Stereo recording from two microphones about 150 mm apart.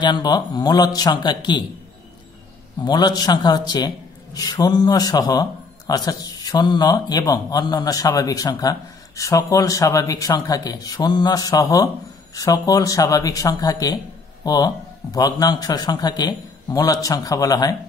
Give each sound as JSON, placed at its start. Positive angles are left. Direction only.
{"t": 0.0, "sound": "a man's voice", "side_deg": 30}
{"t": 2.8, "sound": "a man's voice", "side_deg": 30}